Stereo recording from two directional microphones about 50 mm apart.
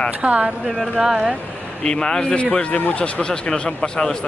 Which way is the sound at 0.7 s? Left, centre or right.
Centre.